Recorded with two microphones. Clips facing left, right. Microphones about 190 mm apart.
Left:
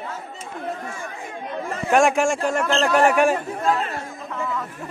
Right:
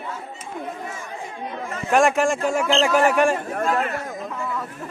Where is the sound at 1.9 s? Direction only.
Centre (ahead or behind).